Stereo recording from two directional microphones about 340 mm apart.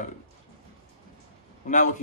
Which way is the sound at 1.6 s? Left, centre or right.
Left.